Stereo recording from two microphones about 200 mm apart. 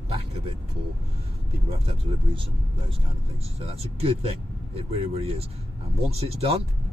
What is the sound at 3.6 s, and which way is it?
Speech, 30° right (ahead or behind).